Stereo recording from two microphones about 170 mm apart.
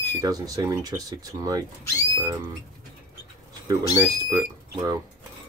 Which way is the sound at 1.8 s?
20° left (ahead or behind).